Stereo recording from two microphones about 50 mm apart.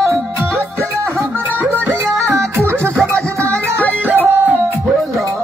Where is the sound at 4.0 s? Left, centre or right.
Right.